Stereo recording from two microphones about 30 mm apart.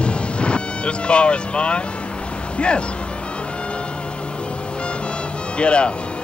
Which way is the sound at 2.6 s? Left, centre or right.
Left.